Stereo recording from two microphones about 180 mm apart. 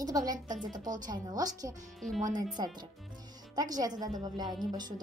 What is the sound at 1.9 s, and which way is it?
Speech, centre (ahead or behind).